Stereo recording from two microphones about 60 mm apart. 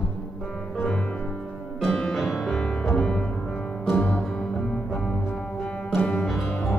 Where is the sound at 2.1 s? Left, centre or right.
Centre; by 4.5 s left.